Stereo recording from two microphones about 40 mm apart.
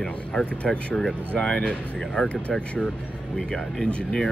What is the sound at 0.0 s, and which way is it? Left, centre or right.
Speech, left.